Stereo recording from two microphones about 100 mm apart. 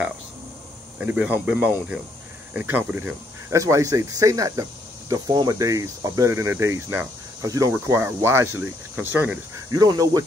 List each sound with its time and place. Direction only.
0.9 s speech: 15° right (ahead or behind); by 6.3 s 35° right (ahead or behind)
6.3 s speech: 25° right (ahead or behind)
9.7 s speech: 40° right (ahead or behind)